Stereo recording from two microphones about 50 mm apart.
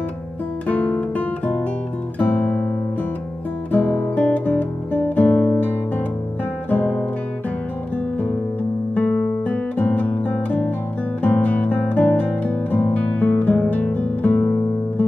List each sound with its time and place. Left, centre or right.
0.7 s guitar: left
3.7 s guitar: left
6.7 s music: left
8.9 s guitar: left
11.2 s music: left